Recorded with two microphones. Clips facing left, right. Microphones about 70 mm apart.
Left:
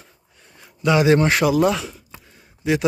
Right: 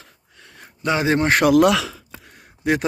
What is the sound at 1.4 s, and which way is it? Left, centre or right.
Speech, right.